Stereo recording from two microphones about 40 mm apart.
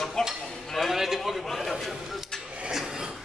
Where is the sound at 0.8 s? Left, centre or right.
Centre.